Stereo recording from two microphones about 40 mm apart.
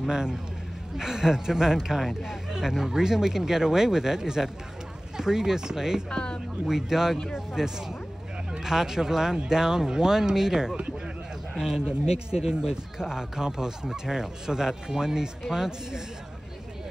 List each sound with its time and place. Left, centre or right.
0.0 s speech: centre
6.0 s speech: left
6.6 s speech: centre